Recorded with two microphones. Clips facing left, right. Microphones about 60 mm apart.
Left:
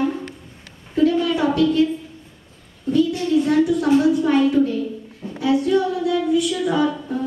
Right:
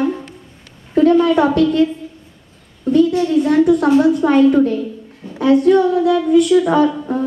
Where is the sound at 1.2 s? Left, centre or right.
Right.